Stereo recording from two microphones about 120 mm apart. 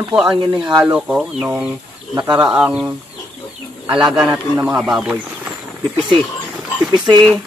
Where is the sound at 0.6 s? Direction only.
30° right (ahead or behind).